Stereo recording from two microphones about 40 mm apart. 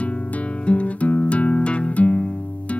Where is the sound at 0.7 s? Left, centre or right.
Left.